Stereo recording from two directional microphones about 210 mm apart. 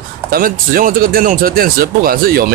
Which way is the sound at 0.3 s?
40° right (ahead or behind).